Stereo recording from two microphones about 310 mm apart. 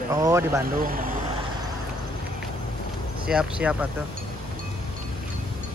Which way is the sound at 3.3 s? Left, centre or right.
Centre.